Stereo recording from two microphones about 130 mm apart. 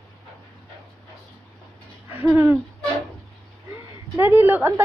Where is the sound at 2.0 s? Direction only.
20° right (ahead or behind).